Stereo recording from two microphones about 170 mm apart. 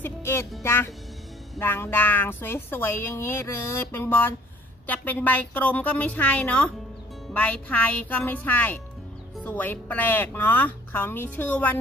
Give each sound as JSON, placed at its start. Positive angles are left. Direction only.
{"t": 0.0, "sound": "music", "side_deg": 15}
{"t": 0.6, "sound": "speech", "side_deg": 15}